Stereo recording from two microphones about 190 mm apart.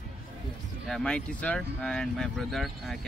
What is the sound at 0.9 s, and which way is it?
Speech, 5° left (ahead or behind).